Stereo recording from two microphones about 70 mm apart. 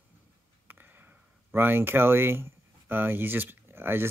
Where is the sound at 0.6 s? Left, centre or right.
Right.